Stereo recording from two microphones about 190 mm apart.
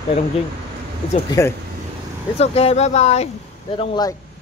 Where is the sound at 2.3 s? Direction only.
30° left (ahead or behind).